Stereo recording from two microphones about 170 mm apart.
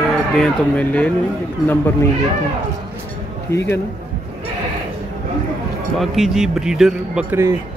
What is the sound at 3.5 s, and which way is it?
Speech, 15° left (ahead or behind).